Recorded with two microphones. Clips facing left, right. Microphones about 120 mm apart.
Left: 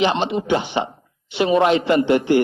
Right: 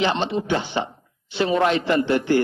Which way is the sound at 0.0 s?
15° left (ahead or behind).